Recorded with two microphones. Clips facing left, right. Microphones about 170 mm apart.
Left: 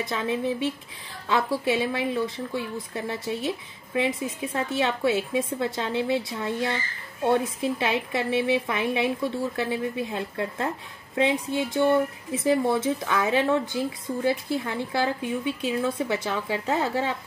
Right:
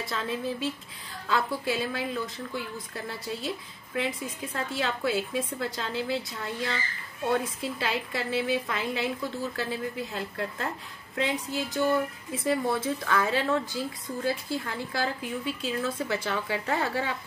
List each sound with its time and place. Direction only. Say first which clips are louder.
0.0 s speech: left 5 dB; 20° left (ahead or behind)